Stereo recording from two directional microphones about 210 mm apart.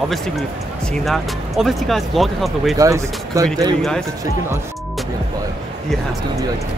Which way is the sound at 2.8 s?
15° right (ahead or behind).